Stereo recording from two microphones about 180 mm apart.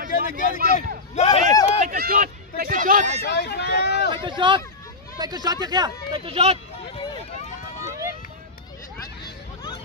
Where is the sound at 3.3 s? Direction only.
70° left (ahead or behind).